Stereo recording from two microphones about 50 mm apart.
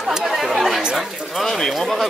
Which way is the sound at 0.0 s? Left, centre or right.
Centre.